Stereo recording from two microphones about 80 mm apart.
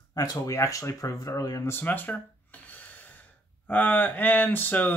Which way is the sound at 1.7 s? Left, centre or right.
Left.